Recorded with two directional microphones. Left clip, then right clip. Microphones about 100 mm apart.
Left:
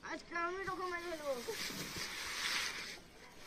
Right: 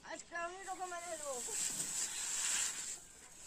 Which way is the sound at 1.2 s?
20° right (ahead or behind).